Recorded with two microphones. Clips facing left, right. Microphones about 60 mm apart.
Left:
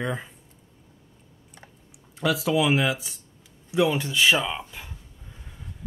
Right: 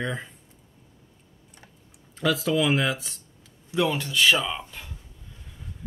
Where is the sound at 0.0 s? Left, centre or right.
Centre.